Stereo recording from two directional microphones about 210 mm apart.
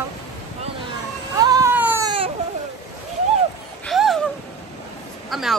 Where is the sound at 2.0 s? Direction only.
25° right (ahead or behind).